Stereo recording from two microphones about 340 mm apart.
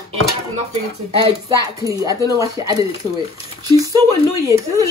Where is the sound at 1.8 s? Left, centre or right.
Centre.